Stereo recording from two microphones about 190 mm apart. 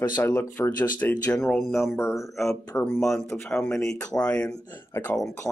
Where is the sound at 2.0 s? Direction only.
15° left (ahead or behind).